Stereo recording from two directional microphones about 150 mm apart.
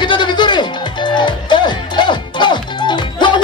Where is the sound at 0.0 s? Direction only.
30° left (ahead or behind).